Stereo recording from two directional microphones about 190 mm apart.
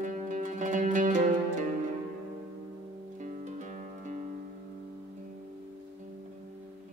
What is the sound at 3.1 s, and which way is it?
Music, 40° right (ahead or behind).